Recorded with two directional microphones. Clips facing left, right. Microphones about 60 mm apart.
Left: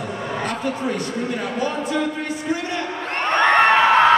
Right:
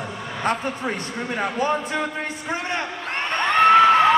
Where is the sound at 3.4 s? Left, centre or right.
Left.